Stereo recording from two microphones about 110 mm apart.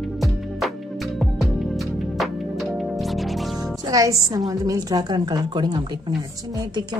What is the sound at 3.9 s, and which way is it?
A woman's voice, 30° right (ahead or behind).